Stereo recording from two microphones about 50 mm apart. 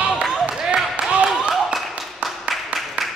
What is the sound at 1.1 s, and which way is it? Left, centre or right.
Clapping, centre.